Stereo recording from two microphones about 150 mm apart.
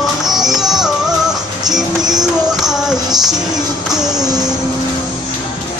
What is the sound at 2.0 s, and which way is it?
Music, 25° right (ahead or behind).